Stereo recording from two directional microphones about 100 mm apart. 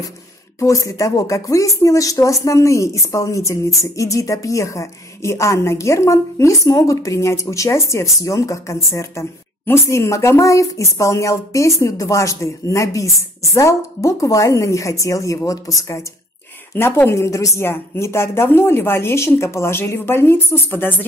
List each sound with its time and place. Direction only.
0.6 s a woman's voice: 30° left (ahead or behind)